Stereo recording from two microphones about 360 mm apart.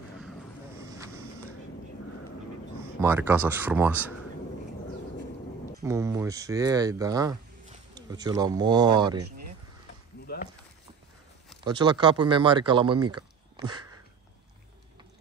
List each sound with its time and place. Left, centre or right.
0.8 s vehicle: centre
3.0 s speech: centre
5.9 s speech: centre
10.2 s a sound: left
11.6 s speech: centre
13.1 s a sound: centre